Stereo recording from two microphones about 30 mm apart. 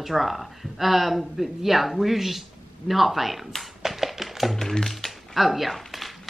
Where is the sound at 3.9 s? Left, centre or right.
Centre.